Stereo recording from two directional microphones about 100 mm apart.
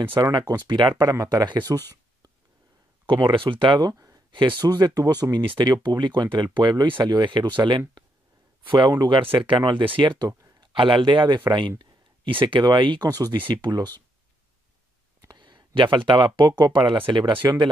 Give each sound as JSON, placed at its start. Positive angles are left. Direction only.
{"t": 0.2, "sound": "speech", "side_deg": -45}
{"t": 1.1, "sound": "speech", "side_deg": -40}
{"t": 3.1, "sound": "speech", "side_deg": -55}
{"t": 5.4, "sound": "speech", "side_deg": -50}
{"t": 10.6, "sound": "a sound", "side_deg": -55}
{"t": 11.1, "sound": "speech", "side_deg": -50}
{"t": 15.2, "sound": "a sound", "side_deg": -50}
{"t": 16.1, "sound": "speech", "side_deg": -50}